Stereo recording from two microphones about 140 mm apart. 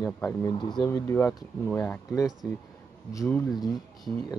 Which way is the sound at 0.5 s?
35° left (ahead or behind).